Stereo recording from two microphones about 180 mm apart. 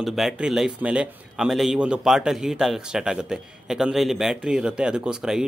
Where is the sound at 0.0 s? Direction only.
Centre (ahead or behind).